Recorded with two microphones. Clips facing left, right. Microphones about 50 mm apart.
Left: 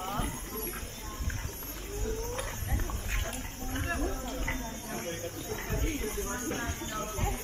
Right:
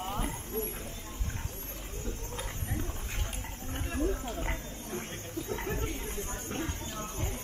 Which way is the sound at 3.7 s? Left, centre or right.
Left.